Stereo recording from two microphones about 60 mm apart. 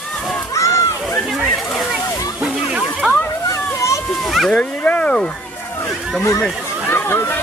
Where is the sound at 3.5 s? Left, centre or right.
Left.